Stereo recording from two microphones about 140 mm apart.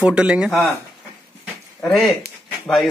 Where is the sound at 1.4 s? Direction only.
5° left (ahead or behind).